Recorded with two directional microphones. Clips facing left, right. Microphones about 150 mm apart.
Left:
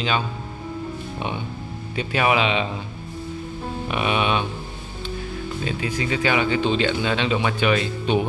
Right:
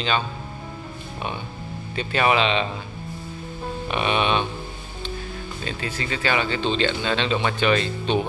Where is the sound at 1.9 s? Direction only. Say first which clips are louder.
Even; 10° left (ahead or behind).